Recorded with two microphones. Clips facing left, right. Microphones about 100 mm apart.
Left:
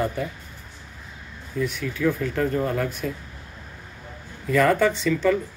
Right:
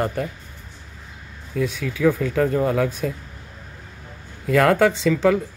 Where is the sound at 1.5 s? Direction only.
90° right.